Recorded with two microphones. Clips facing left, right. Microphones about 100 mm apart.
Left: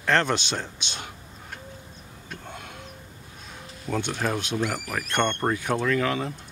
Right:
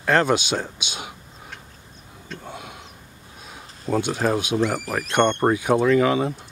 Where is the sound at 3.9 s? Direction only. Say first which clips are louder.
Right 5 dB; 10° right (ahead or behind).